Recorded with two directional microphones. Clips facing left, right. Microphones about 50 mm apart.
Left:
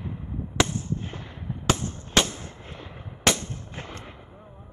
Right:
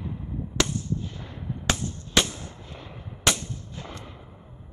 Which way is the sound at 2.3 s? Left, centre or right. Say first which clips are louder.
Left 1 dB; left.